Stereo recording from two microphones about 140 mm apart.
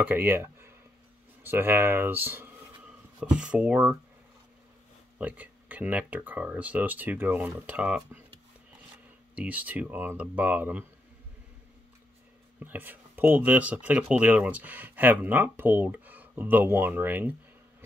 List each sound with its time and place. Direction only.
0.0 s speech: 15° right (ahead or behind)
5.2 s speech: 10° right (ahead or behind)
9.3 s speech: 10° right (ahead or behind)
12.5 s speech: 15° right (ahead or behind)